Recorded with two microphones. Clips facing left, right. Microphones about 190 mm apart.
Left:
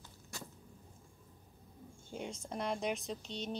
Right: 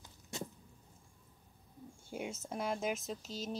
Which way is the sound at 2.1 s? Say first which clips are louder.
Right 1 dB; 5° right (ahead or behind).